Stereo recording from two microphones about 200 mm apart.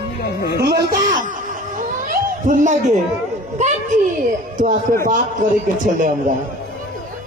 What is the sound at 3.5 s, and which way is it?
Music, 35° right (ahead or behind).